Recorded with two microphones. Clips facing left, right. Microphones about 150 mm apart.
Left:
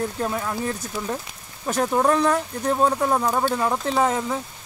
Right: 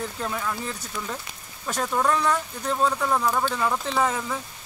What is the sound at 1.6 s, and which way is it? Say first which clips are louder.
Speech: left 4 dB; 25° left (ahead or behind).